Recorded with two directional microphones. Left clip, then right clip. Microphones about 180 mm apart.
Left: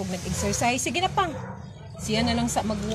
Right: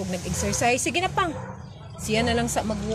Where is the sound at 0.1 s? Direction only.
25° right (ahead or behind).